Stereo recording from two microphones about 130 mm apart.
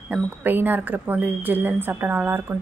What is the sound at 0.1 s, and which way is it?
Speech, 15° right (ahead or behind).